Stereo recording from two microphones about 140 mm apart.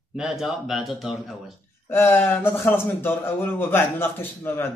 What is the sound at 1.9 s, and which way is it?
Speech, 15° left (ahead or behind).